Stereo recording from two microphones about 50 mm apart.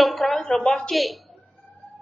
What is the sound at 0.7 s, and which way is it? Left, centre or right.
Speech, centre.